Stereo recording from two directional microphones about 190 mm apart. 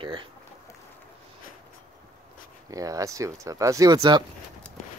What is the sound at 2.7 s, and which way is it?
Speech, 20° right (ahead or behind).